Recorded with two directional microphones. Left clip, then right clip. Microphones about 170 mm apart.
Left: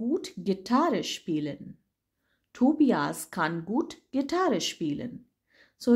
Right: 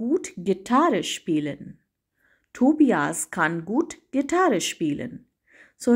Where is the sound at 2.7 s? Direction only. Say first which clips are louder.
Right 5 dB; 15° right (ahead or behind).